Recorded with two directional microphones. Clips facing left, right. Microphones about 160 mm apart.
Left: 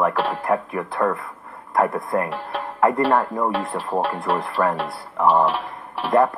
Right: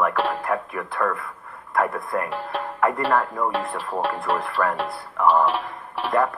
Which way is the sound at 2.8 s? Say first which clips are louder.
Left 4 dB; 30° left (ahead or behind).